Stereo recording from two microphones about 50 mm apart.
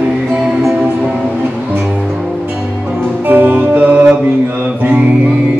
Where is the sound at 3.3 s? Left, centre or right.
Right.